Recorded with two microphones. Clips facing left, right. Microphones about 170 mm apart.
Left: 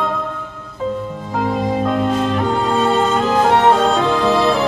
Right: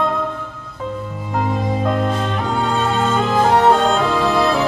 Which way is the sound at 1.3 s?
Centre (ahead or behind).